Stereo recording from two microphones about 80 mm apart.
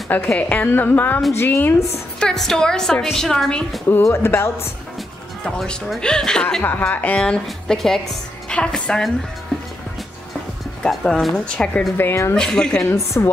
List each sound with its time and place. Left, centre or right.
0.3 s speech: centre
2.1 s a woman's voice: centre
4.0 s speech: left
5.4 s a woman's voice: centre
6.6 s a woman's voice: left
10.8 s a woman's voice: centre
11.3 s a woman's voice: centre
12.0 s speech: left
12.4 s a woman's voice: centre
12.8 s speech: left